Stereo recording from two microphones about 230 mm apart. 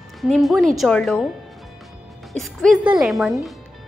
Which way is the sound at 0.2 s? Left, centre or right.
Centre.